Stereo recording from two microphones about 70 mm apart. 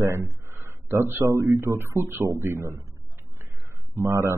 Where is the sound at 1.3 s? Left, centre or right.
Right.